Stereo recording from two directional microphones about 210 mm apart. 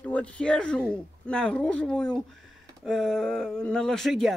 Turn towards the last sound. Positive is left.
turn(degrees=0)  # may be behind; listen again after turning